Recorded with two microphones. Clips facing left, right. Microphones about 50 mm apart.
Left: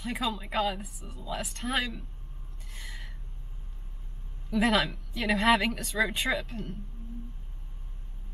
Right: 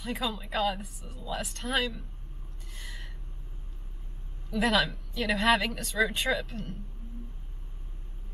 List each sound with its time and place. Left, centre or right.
0.0 s speech: centre
2.7 s a sound: centre
4.5 s speech: centre